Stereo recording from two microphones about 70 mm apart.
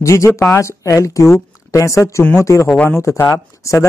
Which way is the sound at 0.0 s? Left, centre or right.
Left.